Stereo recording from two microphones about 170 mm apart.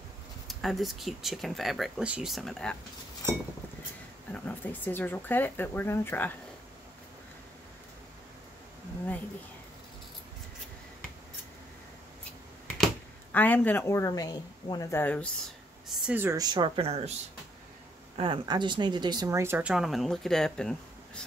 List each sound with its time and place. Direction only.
0.5 s speech: centre (ahead or behind)
4.3 s speech: 10° left (ahead or behind)
12.6 s speech: 5° left (ahead or behind)
15.9 s speech: 10° right (ahead or behind); by 17.1 s 35° right (ahead or behind)
18.1 s speech: 30° right (ahead or behind); by 21.2 s 5° left (ahead or behind)